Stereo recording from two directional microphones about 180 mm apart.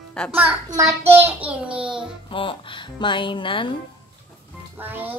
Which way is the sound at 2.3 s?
30° left (ahead or behind).